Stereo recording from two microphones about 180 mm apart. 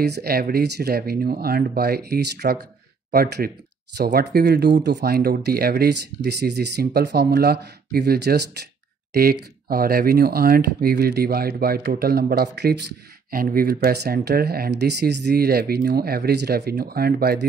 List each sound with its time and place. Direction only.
0.0 s speech: 60° right (ahead or behind)
13.3 s speech: 50° right (ahead or behind)